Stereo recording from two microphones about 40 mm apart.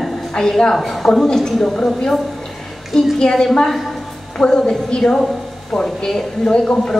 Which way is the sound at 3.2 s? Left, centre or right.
Centre.